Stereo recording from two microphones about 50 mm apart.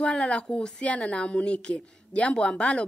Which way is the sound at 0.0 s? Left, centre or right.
Left.